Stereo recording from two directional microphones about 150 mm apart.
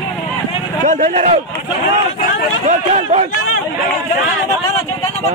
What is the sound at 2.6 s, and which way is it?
Speech, 45° right (ahead or behind).